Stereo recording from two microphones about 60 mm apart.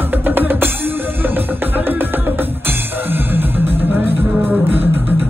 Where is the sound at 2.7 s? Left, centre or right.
Right.